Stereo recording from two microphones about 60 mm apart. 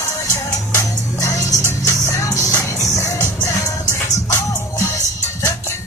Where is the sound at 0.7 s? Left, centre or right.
Left.